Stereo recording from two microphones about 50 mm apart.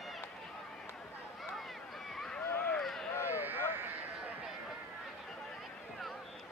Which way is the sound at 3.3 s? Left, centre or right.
Right.